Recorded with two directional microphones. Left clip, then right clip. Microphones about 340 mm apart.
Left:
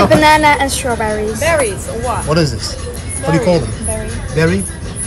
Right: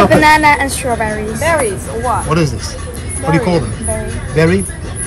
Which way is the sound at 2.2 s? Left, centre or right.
Centre.